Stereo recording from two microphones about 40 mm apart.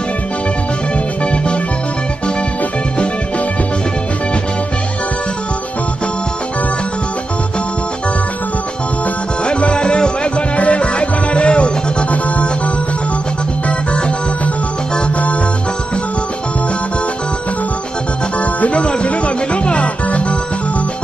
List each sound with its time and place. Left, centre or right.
1.2 s music: left
9.4 s music: left
18.4 s music: left